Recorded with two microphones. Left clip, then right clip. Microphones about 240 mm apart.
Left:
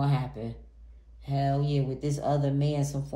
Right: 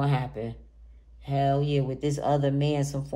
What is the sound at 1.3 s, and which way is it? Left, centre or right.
A woman's voice, right.